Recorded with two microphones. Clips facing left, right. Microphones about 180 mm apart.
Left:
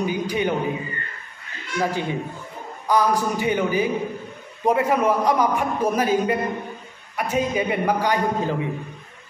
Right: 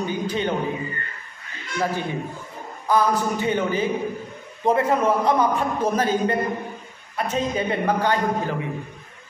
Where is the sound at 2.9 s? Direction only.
15° left (ahead or behind).